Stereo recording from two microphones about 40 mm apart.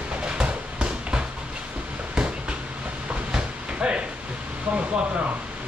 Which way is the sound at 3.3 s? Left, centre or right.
Right.